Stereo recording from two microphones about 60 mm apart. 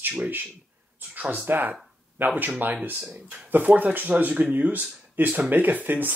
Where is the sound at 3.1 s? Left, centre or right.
Right.